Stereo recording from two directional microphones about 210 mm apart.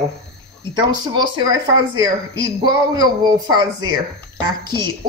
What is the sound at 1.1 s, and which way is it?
Speech, 20° right (ahead or behind).